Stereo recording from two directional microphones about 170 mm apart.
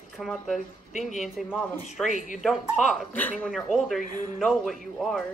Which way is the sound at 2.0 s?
50° left (ahead or behind).